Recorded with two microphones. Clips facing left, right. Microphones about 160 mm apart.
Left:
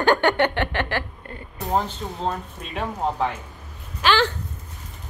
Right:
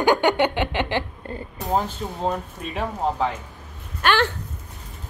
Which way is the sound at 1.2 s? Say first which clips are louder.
Right 6 dB; 30° right (ahead or behind).